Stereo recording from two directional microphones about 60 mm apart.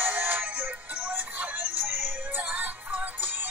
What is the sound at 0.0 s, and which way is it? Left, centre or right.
Synthetic singing, right.